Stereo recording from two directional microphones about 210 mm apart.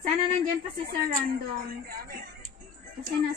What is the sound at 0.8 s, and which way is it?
A woman's voice, 40° right (ahead or behind).